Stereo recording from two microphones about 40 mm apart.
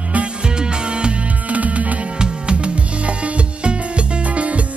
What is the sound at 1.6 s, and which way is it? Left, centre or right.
Music, right.